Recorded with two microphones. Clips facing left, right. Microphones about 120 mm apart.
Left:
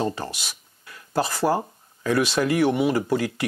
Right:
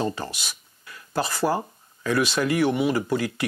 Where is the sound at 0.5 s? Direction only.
35° left (ahead or behind).